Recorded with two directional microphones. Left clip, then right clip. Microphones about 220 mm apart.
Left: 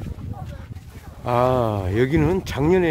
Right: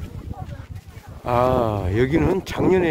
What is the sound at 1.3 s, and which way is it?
Speech, centre (ahead or behind).